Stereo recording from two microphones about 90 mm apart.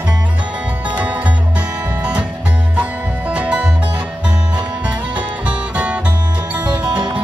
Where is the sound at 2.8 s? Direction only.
15° right (ahead or behind).